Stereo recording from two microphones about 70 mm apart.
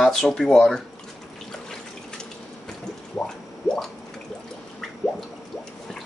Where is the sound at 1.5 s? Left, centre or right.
Centre.